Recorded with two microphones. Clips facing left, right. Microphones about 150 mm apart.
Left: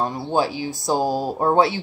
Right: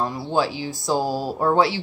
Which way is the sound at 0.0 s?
20° left (ahead or behind).